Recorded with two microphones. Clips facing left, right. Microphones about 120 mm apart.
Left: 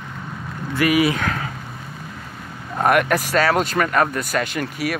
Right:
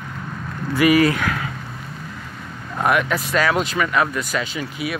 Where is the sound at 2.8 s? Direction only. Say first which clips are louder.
Left 2 dB; 55° left (ahead or behind).